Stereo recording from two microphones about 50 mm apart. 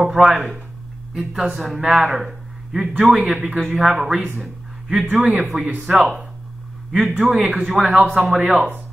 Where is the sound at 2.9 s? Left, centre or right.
Right.